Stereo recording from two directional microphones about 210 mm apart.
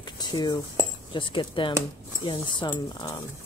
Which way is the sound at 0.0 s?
20° left (ahead or behind).